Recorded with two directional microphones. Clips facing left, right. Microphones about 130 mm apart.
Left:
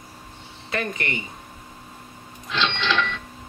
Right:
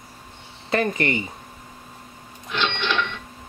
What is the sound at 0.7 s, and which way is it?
Speech, 30° right (ahead or behind).